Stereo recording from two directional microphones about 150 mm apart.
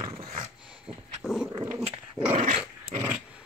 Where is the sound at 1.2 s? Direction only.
5° left (ahead or behind).